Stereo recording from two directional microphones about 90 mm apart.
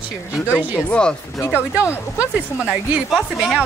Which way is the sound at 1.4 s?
25° left (ahead or behind).